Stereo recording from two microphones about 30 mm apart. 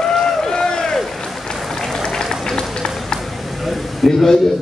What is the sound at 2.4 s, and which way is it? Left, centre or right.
Run, left.